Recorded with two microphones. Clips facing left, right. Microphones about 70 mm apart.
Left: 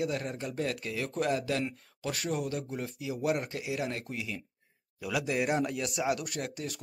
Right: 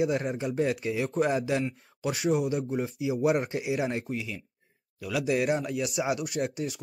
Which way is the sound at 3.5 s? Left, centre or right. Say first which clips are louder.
Right 5 dB; right.